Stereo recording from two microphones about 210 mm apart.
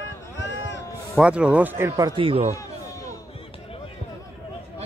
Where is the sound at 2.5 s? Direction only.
15° left (ahead or behind).